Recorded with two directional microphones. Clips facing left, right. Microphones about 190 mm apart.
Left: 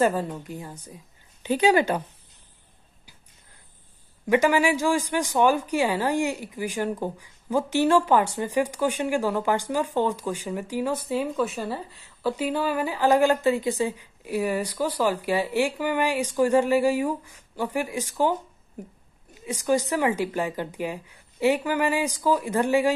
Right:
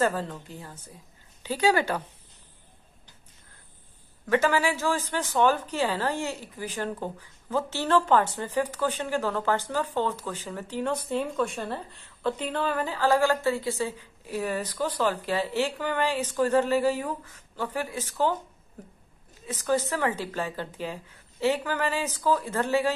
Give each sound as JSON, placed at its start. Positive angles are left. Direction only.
{"t": 0.0, "sound": "a woman's voice", "side_deg": 15}
{"t": 4.3, "sound": "a woman's voice", "side_deg": 15}
{"t": 19.4, "sound": "a woman's voice", "side_deg": 15}